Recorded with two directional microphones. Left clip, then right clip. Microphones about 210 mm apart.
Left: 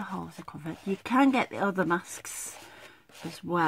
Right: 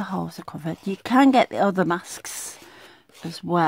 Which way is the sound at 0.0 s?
50° right (ahead or behind).